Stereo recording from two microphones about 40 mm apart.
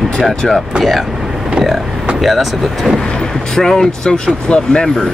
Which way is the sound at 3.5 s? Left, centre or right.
Centre.